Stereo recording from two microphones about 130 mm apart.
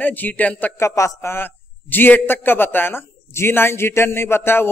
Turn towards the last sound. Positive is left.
turn(degrees=20)  # may be behind; listen again after turning